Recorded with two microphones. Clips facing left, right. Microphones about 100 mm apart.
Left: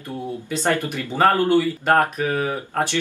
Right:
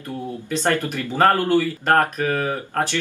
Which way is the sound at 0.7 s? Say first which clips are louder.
Even; 15° left (ahead or behind).